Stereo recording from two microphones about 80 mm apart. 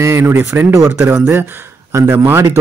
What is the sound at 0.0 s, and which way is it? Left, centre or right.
Speech, right.